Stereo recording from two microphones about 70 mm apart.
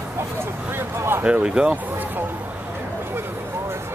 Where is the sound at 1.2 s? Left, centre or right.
Centre.